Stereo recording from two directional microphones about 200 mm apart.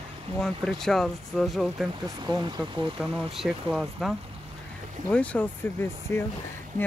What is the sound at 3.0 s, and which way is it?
Speech, centre (ahead or behind).